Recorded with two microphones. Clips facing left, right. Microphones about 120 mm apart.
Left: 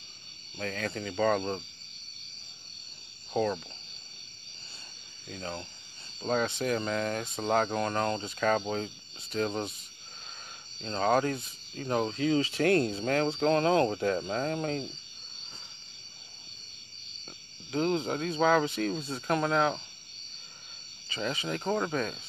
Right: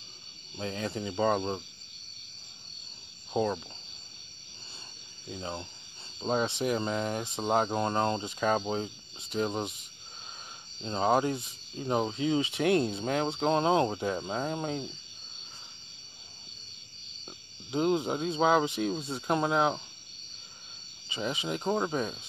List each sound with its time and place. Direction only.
0.6 s speech: 25° right (ahead or behind)
3.3 s speech: 15° right (ahead or behind)
5.3 s speech: 25° right (ahead or behind)
17.6 s speech: 25° right (ahead or behind)
21.1 s speech: 20° right (ahead or behind)